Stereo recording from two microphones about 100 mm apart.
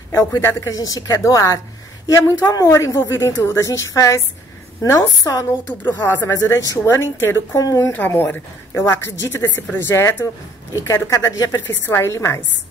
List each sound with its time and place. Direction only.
0.1 s a woman's voice: 35° left (ahead or behind)
0.4 s a woman's voice: 25° left (ahead or behind)
0.7 s a woman's voice: 35° left (ahead or behind)
7.9 s a woman's voice: 20° left (ahead or behind)